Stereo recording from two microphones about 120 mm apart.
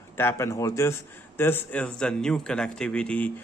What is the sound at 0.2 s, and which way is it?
Speech, 20° left (ahead or behind).